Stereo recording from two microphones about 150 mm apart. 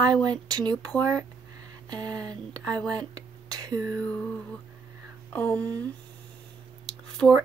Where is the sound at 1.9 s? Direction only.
25° right (ahead or behind).